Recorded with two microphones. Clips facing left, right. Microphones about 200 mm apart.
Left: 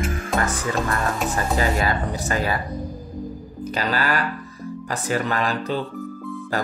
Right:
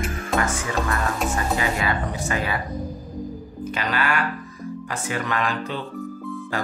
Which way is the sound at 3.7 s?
35° left (ahead or behind).